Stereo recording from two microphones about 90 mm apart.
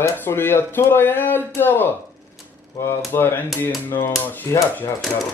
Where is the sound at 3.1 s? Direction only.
25° left (ahead or behind).